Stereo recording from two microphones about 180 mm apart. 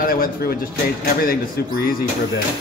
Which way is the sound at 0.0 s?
55° left (ahead or behind).